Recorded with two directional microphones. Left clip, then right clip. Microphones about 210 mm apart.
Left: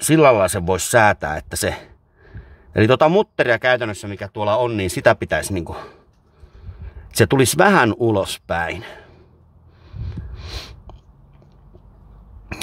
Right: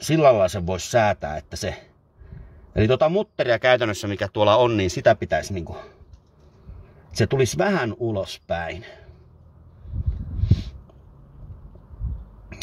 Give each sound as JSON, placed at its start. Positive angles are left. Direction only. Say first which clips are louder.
{"t": 0.0, "sound": "speech", "louder": "left 3 dB", "side_deg": 25}
{"t": 3.4, "sound": "speech", "louder": "left 1 dB", "side_deg": 10}
{"t": 5.0, "sound": "speech", "louder": "left 3 dB", "side_deg": 30}
{"t": 7.2, "sound": "speech", "louder": "left 6 dB", "side_deg": 35}
{"t": 10.4, "sound": "a sound", "louder": "right 1 dB", "side_deg": 40}